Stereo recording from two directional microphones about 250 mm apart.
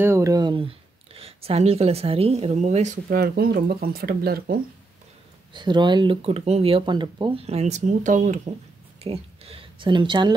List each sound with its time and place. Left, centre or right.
0.0 s speech: centre; by 4.6 s right
5.5 s speech: centre